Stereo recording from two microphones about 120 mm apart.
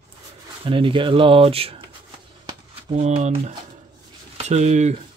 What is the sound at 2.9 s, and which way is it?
Speech, 70° right (ahead or behind).